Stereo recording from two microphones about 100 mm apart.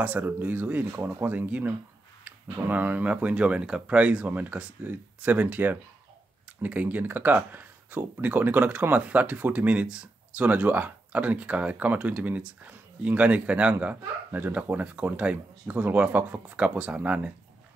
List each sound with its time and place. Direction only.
0.0 s speech: 15° right (ahead or behind)